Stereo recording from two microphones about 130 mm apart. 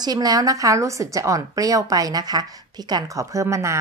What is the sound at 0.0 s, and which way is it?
Speech, 30° right (ahead or behind).